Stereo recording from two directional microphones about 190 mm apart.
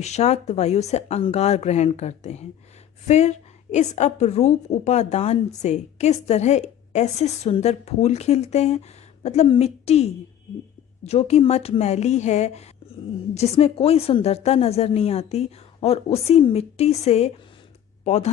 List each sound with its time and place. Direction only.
0.0 s a woman's voice: 35° left (ahead or behind)